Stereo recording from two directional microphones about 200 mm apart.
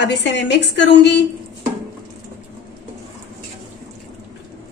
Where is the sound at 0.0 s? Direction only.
60° left (ahead or behind).